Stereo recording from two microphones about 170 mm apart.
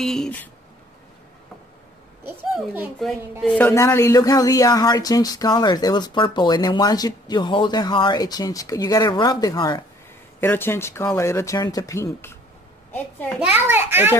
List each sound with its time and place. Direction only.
0.0 s speech: 5° left (ahead or behind)
2.5 s a child's voice: 10° right (ahead or behind)
3.0 s speech: centre (ahead or behind)
13.4 s a child's voice: 10° right (ahead or behind)